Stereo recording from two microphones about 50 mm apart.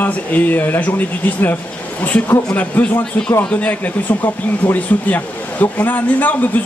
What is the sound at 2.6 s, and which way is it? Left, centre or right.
Speech, left.